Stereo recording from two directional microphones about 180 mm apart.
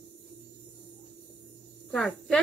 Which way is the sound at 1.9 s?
Centre (ahead or behind).